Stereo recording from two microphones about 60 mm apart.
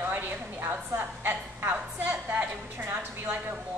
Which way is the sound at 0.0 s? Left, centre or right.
Right.